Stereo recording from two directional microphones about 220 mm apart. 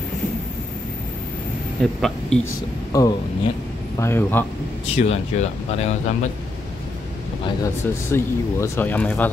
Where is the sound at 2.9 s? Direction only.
15° left (ahead or behind).